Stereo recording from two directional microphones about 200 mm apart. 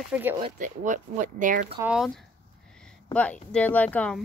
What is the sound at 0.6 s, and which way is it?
Speech, 40° right (ahead or behind).